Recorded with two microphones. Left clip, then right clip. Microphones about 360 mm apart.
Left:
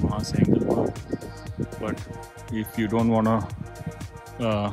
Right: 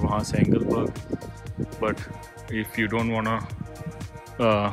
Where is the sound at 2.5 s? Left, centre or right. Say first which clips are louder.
Right 1 dB; centre.